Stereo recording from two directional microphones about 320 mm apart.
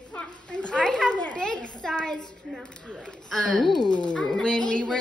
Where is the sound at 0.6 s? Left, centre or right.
Centre.